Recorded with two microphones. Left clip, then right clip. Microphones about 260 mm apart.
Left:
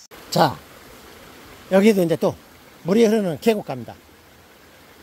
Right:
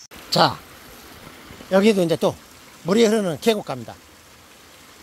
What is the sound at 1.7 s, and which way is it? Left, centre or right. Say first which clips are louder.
Speech: left 1 dB; centre.